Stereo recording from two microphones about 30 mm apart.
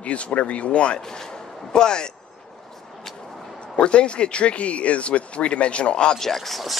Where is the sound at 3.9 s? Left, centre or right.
Left.